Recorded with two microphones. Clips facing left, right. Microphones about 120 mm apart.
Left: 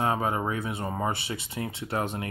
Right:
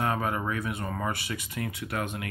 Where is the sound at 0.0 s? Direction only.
25° left (ahead or behind).